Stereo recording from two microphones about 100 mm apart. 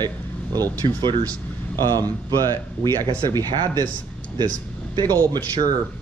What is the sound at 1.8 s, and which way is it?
Speech, 40° right (ahead or behind).